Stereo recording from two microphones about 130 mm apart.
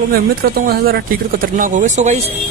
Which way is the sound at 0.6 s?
90° right.